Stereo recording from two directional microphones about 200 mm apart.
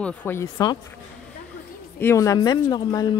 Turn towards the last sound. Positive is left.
turn(degrees=20)  # may be behind; listen again after turning